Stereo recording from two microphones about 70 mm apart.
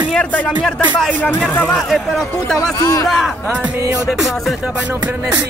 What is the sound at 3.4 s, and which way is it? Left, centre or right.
Music, right.